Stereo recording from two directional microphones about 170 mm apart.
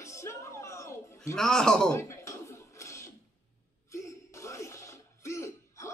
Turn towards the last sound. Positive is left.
turn(degrees=15)  # may be behind; listen again after turning